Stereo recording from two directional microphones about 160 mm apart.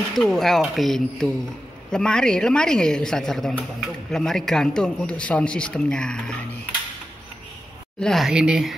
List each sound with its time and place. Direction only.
0.1 s a woman's voice: centre (ahead or behind)
8.0 s a woman's voice: centre (ahead or behind)